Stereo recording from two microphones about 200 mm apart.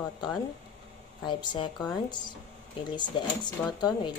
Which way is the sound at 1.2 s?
20° left (ahead or behind).